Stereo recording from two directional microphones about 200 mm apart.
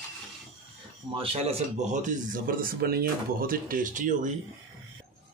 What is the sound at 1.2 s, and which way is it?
Speech, 30° right (ahead or behind).